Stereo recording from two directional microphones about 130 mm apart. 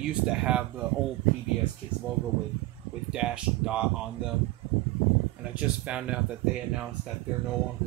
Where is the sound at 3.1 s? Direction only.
5° right (ahead or behind).